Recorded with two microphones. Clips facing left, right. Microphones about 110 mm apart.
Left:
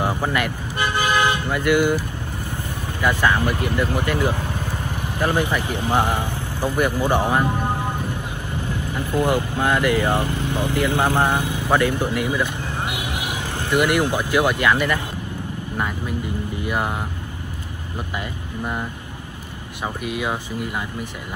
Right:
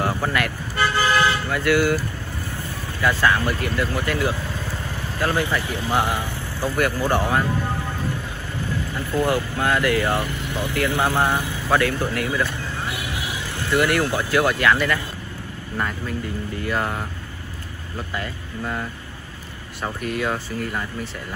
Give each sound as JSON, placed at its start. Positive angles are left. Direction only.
{"t": 0.0, "sound": "speech", "side_deg": 15}
{"t": 16.6, "sound": "speech", "side_deg": 10}